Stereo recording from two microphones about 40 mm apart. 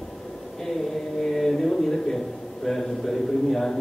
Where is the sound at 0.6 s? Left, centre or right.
Centre.